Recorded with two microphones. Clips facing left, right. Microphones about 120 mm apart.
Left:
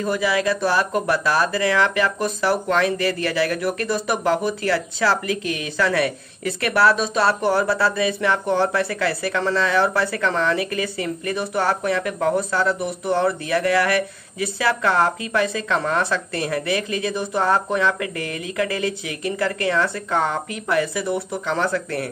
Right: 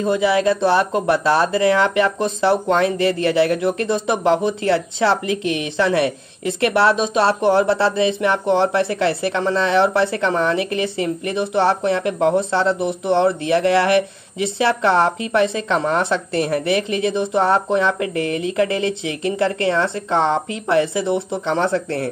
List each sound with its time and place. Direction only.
0.0 s speech: 25° right (ahead or behind)